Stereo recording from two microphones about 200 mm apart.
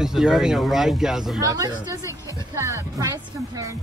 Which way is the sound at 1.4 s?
15° right (ahead or behind).